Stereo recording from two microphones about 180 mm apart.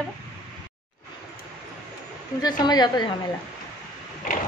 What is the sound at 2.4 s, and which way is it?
Speech, 20° left (ahead or behind).